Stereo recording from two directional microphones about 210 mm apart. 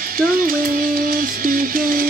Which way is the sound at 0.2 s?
45° right (ahead or behind).